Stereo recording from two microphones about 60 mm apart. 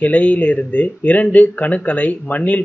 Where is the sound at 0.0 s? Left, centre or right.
Left.